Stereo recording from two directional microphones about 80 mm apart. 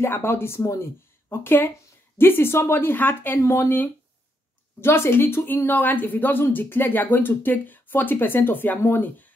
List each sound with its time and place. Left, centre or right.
0.0 s speech: left